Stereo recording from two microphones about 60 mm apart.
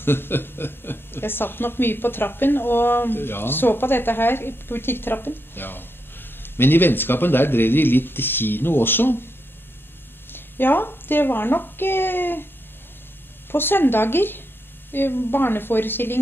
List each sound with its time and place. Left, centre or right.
0.0 s speech: left
10.3 s speech: left
13.5 s speech: left